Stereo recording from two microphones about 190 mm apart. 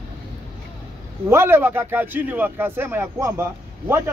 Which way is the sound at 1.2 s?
15° right (ahead or behind).